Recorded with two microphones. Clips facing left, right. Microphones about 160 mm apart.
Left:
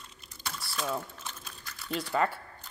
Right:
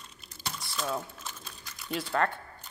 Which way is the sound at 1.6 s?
15° right (ahead or behind).